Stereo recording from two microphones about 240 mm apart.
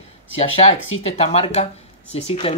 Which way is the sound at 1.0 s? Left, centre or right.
Left.